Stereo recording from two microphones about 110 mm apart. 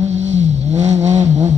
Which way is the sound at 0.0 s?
90° right.